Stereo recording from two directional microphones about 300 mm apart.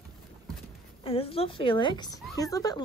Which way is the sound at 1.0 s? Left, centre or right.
Centre.